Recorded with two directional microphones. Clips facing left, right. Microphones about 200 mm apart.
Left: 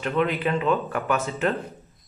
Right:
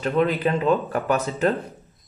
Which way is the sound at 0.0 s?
35° right (ahead or behind).